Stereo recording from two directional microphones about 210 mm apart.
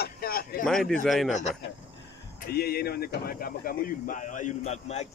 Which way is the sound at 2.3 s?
45° left (ahead or behind).